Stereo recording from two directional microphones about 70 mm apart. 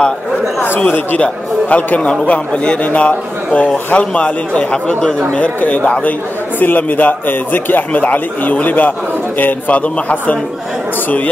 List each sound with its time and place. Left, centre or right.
0.7 s speech: left